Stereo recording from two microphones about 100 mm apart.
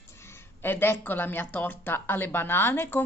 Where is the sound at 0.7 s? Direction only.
20° left (ahead or behind).